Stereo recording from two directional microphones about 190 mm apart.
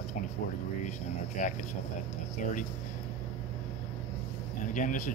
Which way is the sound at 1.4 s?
40° left (ahead or behind).